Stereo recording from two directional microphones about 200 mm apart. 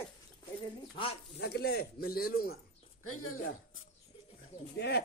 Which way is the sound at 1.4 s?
55° left (ahead or behind).